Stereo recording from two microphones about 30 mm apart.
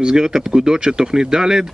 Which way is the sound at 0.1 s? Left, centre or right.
Centre.